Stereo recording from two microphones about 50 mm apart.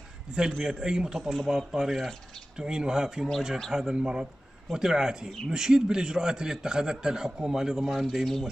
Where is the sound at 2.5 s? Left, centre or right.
Centre.